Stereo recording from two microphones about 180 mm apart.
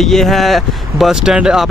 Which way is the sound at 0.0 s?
Centre (ahead or behind).